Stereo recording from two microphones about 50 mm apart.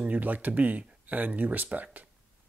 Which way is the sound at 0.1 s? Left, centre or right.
Right.